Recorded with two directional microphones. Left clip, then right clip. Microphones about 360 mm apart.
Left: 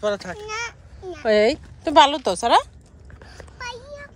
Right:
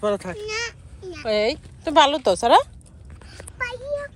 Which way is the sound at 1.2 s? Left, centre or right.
Left.